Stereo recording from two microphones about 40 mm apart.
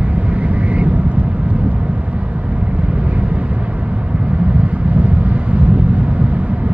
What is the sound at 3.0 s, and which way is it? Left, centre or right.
Vehicle, right.